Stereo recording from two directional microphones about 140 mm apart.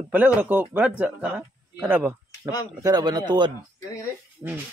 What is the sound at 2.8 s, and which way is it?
Speech, 30° right (ahead or behind).